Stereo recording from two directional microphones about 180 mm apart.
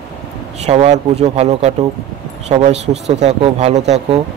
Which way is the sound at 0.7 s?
35° right (ahead or behind).